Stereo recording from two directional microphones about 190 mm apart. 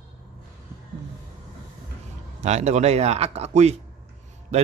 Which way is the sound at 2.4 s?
35° right (ahead or behind).